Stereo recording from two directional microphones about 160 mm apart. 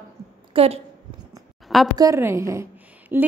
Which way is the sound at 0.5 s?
40° right (ahead or behind).